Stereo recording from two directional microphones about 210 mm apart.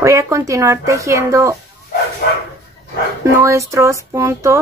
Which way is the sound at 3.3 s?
15° right (ahead or behind).